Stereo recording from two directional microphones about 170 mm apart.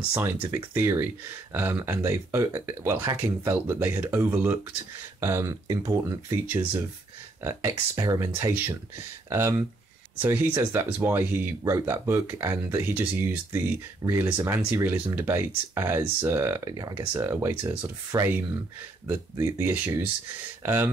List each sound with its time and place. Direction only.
0.1 s speech: 10° right (ahead or behind)